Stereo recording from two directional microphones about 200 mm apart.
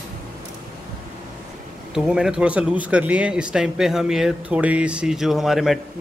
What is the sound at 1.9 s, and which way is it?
Speech, 5° right (ahead or behind).